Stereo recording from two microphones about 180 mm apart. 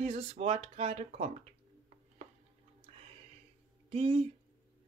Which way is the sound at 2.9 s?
35° right (ahead or behind).